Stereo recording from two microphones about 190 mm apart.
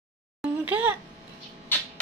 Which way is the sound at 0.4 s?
10° right (ahead or behind).